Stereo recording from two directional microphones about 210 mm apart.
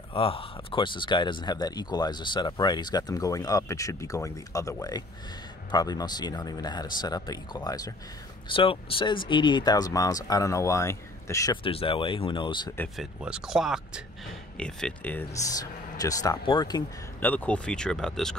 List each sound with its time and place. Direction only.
0.1 s speech: 25° left (ahead or behind)
11.6 s speech: 25° left (ahead or behind)
12.7 s speech: 5° left (ahead or behind); by 16.8 s 20° left (ahead or behind)
17.2 s speech: 10° left (ahead or behind)